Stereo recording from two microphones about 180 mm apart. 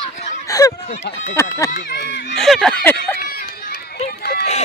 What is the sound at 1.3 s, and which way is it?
Speech, 15° left (ahead or behind).